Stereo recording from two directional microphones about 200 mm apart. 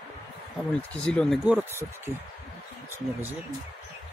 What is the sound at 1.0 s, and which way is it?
Speech, 5° left (ahead or behind).